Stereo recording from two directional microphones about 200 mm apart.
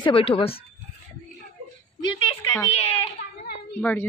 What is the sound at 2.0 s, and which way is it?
Speech, 25° left (ahead or behind).